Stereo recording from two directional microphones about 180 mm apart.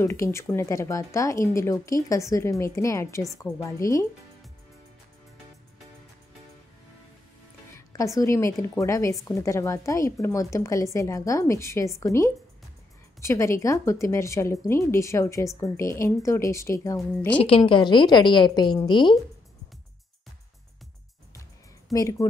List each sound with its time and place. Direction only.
0.0 s speech: 15° left (ahead or behind)
7.7 s speech: 15° left (ahead or behind)
17.4 s a woman's voice: 30° left (ahead or behind)
21.9 s a woman's voice: 20° left (ahead or behind)